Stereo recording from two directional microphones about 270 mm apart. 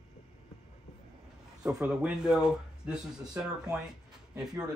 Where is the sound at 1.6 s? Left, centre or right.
Centre.